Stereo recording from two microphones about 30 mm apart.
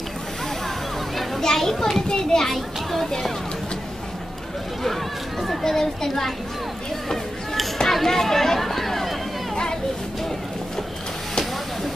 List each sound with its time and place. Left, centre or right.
1.4 s a child's voice: centre
2.5 s a child's voice: centre
5.6 s a child's voice: centre
7.9 s speech: centre